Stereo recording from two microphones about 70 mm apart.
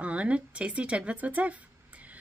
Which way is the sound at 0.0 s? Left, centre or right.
Centre.